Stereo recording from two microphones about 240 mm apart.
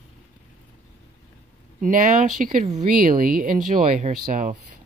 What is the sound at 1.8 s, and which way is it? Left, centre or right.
Speech, right.